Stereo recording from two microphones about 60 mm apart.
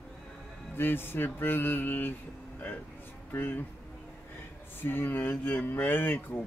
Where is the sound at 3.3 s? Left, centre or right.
Left.